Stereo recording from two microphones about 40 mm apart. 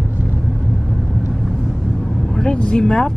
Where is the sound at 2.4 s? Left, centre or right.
Left.